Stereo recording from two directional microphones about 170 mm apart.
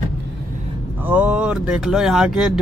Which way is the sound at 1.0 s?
10° right (ahead or behind).